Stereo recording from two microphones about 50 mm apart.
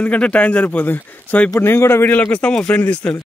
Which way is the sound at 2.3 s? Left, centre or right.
Left.